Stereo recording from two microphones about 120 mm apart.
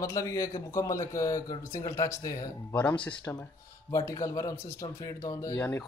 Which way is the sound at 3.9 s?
30° left (ahead or behind).